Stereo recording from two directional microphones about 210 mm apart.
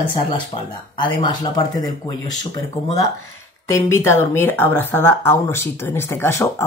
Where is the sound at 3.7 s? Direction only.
15° left (ahead or behind).